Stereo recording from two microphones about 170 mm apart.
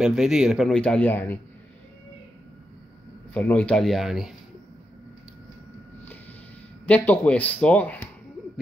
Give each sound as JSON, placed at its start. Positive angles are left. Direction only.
{"t": 0.0, "sound": "speech", "side_deg": 0}
{"t": 3.3, "sound": "speech", "side_deg": 5}
{"t": 6.9, "sound": "speech", "side_deg": 10}